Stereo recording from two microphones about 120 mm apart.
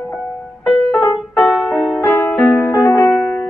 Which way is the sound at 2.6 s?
20° left (ahead or behind).